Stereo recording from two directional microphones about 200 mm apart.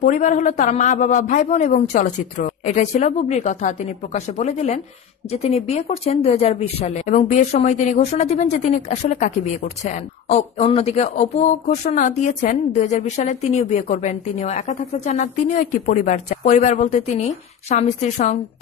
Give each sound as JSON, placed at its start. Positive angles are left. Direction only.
{"t": 0.0, "sound": "a woman's voice", "side_deg": 40}